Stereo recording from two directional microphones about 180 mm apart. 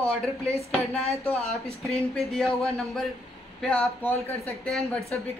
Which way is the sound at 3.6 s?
10° left (ahead or behind).